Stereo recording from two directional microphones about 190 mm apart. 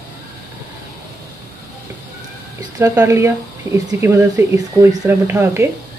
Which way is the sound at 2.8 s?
15° right (ahead or behind).